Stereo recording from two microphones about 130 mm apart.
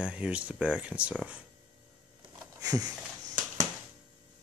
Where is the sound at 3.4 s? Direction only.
90° right.